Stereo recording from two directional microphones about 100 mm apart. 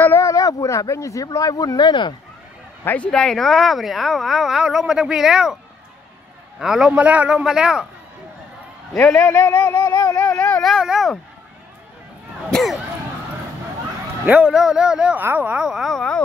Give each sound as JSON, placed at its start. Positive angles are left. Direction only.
{"t": 0.0, "sound": "speech", "side_deg": 30}
{"t": 2.8, "sound": "speech", "side_deg": 20}
{"t": 3.1, "sound": "speech", "side_deg": 5}
{"t": 6.6, "sound": "speech", "side_deg": -5}
{"t": 8.9, "sound": "speech", "side_deg": 10}
{"t": 10.6, "sound": "speech", "side_deg": 0}
{"t": 12.4, "sound": "speech", "side_deg": 5}
{"t": 14.2, "sound": "speech", "side_deg": -15}
{"t": 14.5, "sound": "speech", "side_deg": -5}